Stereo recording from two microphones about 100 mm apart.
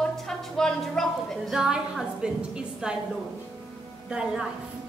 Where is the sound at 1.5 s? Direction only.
5° right (ahead or behind).